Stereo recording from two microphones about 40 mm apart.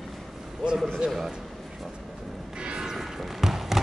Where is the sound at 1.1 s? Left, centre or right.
Centre.